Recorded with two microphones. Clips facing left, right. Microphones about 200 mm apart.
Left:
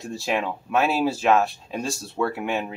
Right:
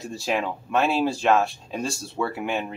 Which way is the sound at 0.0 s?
Centre (ahead or behind).